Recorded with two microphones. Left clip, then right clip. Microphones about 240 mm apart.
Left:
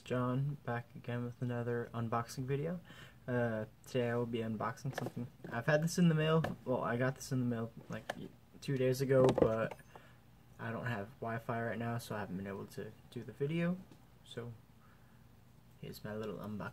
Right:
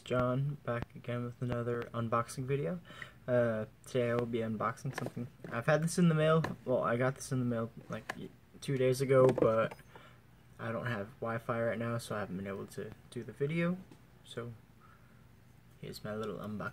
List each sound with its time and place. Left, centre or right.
0.0 s speech: centre
15.8 s speech: centre